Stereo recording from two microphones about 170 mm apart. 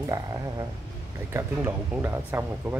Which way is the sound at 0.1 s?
20° right (ahead or behind).